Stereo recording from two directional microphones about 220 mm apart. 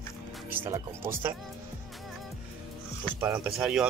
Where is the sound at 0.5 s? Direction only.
10° right (ahead or behind).